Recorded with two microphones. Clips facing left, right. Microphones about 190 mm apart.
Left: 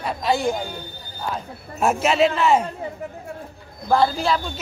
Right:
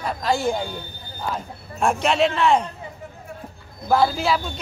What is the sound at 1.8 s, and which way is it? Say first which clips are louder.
Speech: left 1 dB; 5° left (ahead or behind).